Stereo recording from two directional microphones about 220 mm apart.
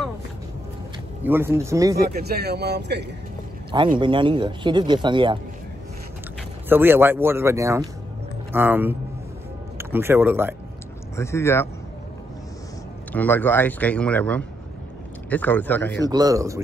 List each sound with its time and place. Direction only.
1.2 s speech: 10° right (ahead or behind)
2.0 s speech: 45° right (ahead or behind)
4.0 s speech: 20° right (ahead or behind)
6.7 s speech: 10° right (ahead or behind)
11.1 s speech: 10° left (ahead or behind)
13.1 s speech: 10° left (ahead or behind)
16.1 s speech: 15° right (ahead or behind)